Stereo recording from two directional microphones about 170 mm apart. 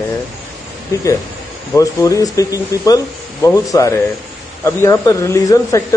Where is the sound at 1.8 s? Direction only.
20° left (ahead or behind).